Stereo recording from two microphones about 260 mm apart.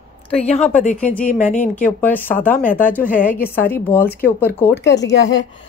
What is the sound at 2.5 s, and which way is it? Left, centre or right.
Speech, left.